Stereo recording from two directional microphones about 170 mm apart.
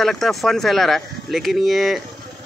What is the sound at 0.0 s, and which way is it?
Speech, centre (ahead or behind).